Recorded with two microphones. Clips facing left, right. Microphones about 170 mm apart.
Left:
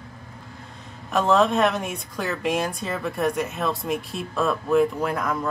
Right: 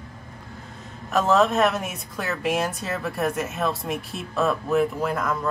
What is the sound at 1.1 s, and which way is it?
A woman's voice, centre (ahead or behind).